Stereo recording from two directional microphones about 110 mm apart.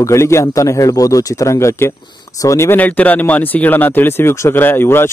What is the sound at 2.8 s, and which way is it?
Speech, 15° left (ahead or behind).